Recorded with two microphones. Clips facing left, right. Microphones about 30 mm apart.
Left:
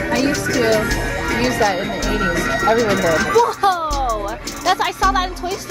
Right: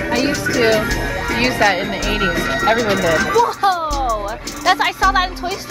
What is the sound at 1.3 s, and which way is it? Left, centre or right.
Music, right.